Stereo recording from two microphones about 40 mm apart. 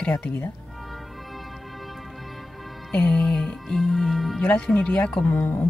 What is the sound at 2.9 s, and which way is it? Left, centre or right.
Music, left.